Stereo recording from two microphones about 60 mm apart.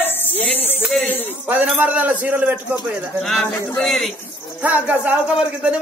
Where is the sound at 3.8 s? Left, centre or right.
Centre.